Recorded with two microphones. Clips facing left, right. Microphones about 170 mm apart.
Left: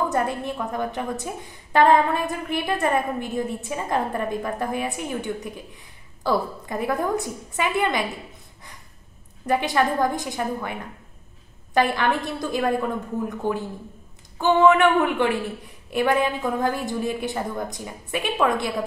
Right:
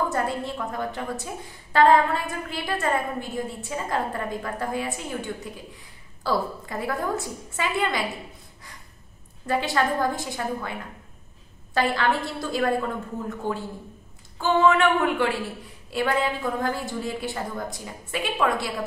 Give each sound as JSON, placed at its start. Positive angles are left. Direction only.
{"t": 0.1, "sound": "a woman's voice", "side_deg": 20}
{"t": 9.5, "sound": "a woman's voice", "side_deg": 15}